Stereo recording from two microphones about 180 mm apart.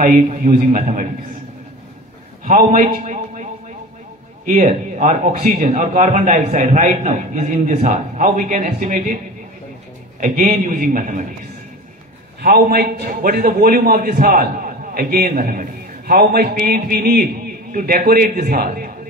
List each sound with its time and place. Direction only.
0.3 s a man's voice: 40° right (ahead or behind)
2.4 s a man's voice: 50° right (ahead or behind)
4.5 s a man's voice: 45° right (ahead or behind)
10.2 s speech: 45° right (ahead or behind)
12.4 s a man's voice: 55° right (ahead or behind)